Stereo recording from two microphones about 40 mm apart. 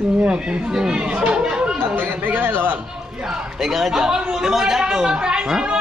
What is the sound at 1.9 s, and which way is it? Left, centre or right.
Speech, right.